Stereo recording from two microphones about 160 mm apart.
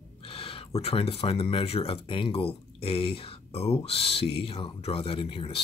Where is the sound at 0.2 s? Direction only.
35° left (ahead or behind).